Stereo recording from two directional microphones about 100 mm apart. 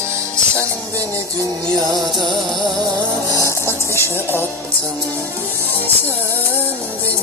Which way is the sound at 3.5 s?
25° left (ahead or behind).